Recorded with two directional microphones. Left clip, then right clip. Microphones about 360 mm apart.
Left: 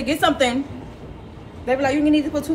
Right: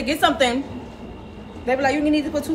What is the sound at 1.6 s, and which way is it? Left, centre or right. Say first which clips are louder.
Speech: left 1 dB; centre.